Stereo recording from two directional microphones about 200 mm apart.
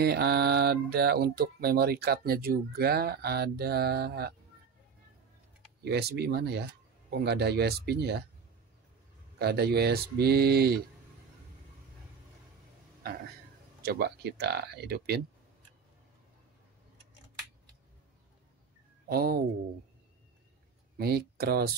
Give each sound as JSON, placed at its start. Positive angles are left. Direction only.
{"t": 0.0, "sound": "mantra", "side_deg": -55}
{"t": 5.9, "sound": "speech", "side_deg": -55}
{"t": 9.4, "sound": "mantra", "side_deg": -55}
{"t": 13.8, "sound": "mantra", "side_deg": -55}
{"t": 19.0, "sound": "mantra", "side_deg": -50}
{"t": 21.0, "sound": "mantra", "side_deg": -50}